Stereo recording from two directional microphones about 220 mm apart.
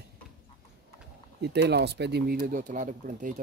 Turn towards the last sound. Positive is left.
turn(degrees=-35)  # may be behind; listen again after turning